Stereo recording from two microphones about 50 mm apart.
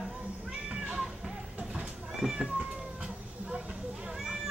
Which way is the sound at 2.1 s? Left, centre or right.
Centre.